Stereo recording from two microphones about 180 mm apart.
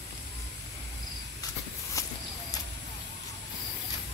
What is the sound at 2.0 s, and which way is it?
Walk, 15° left (ahead or behind).